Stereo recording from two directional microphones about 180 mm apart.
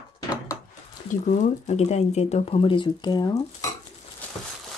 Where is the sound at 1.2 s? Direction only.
40° left (ahead or behind); by 3.4 s 25° left (ahead or behind).